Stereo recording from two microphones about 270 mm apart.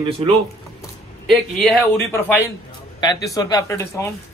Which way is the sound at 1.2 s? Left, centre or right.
Centre.